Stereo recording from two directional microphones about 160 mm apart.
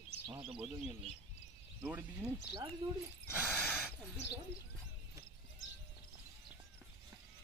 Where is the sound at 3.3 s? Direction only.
10° left (ahead or behind).